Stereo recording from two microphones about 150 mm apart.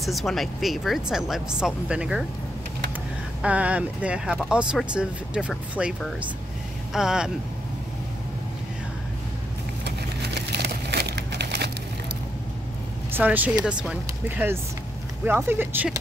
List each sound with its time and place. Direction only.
0.0 s speech: centre (ahead or behind)
3.4 s speech: 10° right (ahead or behind)
10.5 s a sound: 90° right
13.1 s speech: 10° right (ahead or behind)